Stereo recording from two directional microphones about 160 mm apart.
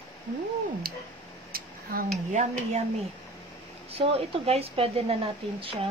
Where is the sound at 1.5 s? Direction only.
65° right (ahead or behind).